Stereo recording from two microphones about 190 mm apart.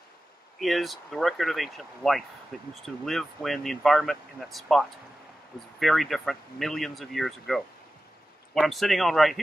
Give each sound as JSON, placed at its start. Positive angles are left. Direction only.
{"t": 0.6, "sound": "speech", "side_deg": 0}